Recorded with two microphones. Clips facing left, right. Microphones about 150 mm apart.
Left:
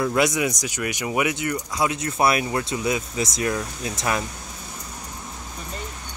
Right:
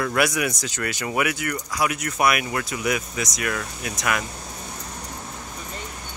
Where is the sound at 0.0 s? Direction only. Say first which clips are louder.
Left 2 dB; 20° left (ahead or behind).